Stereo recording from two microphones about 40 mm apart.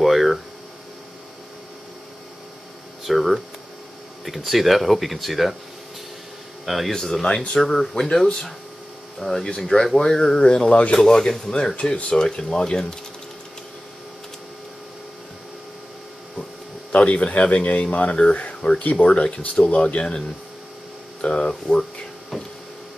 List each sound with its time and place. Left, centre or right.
0.0 s hum: centre
3.1 s speech: centre
6.6 s speech: centre
6.9 s speech: centre
10.7 s speech: left
16.9 s speech: left
22.3 s printer: centre